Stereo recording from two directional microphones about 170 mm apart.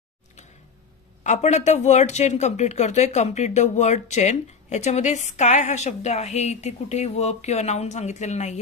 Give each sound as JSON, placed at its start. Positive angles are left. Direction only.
{"t": 1.2, "sound": "speech", "side_deg": 45}